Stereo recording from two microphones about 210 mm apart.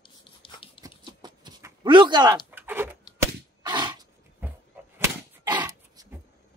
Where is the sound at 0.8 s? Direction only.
20° right (ahead or behind).